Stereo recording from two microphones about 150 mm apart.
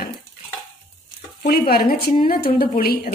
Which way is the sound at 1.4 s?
80° left.